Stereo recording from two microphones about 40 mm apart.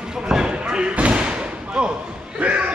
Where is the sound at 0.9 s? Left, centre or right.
Right.